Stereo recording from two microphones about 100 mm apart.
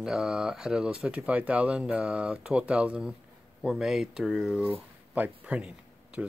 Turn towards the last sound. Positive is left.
turn(degrees=-10)  # may be behind; listen again after turning